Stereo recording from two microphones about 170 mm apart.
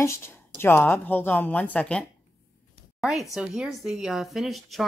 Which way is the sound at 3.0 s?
Centre (ahead or behind).